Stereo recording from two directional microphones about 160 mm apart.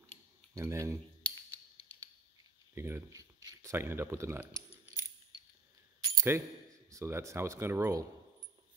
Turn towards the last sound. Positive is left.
turn(degrees=-15)  # may be behind; listen again after turning